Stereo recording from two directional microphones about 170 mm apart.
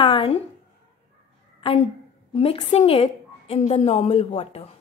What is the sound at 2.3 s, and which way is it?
A woman's voice, 35° left (ahead or behind).